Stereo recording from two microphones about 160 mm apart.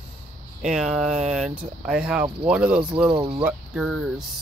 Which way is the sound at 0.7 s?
5° right (ahead or behind).